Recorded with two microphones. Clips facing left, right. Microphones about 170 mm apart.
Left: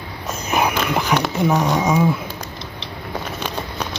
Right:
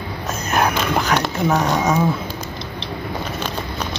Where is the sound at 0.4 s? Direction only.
10° left (ahead or behind).